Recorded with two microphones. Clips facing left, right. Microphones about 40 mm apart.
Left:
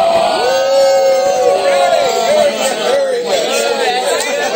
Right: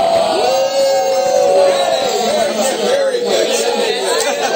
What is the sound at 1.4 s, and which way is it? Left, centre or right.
Chatter, left.